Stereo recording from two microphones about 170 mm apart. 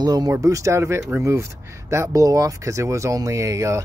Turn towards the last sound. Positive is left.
turn(degrees=-20)  # may be behind; listen again after turning